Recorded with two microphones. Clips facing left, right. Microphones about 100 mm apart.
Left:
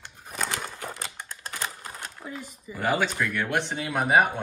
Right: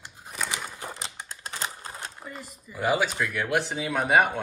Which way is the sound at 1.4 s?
25° right (ahead or behind).